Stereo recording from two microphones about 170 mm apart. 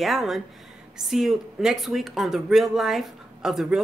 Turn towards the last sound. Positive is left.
turn(degrees=0)  # may be behind; listen again after turning